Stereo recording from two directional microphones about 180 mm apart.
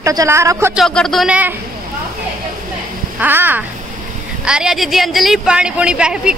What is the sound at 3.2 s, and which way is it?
A woman's voice, 10° right (ahead or behind).